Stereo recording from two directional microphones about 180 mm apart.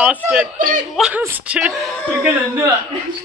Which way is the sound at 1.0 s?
10° right (ahead or behind).